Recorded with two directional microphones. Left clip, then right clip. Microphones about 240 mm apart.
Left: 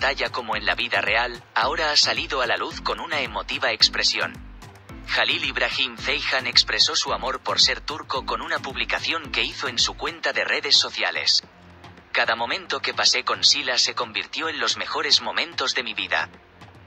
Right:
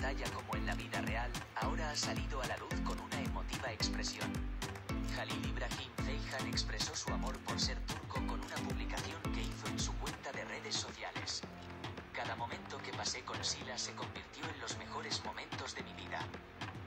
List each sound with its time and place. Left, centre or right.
0.0 s speech: left